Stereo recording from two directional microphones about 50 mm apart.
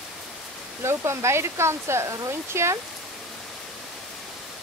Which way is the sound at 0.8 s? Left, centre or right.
Right.